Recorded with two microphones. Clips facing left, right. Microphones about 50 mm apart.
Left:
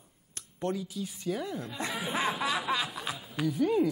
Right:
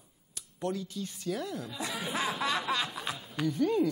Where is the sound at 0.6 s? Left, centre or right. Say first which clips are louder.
Left 1 dB; centre.